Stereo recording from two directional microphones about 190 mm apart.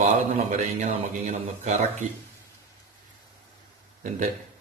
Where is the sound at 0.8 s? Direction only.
40° right (ahead or behind).